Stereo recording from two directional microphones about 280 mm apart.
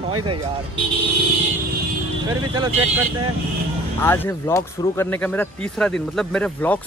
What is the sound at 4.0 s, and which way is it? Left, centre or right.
Speech, centre.